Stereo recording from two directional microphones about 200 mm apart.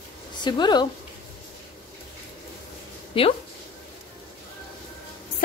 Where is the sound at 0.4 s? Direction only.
20° left (ahead or behind).